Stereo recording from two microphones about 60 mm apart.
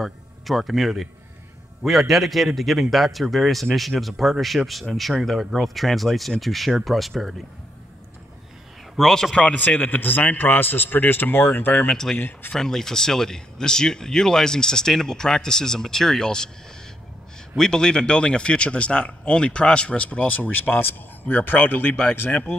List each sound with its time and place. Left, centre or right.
0.0 s a man's voice: centre
8.9 s speech: centre
9.4 s a man's voice: left
11.9 s speech: centre
12.2 s a man's voice: left
12.5 s speech: centre
17.6 s speech: centre; by 21.9 s left
22.0 s speech: left